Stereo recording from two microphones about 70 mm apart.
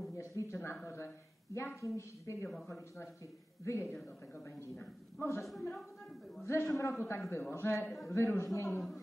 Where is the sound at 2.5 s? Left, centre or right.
Centre.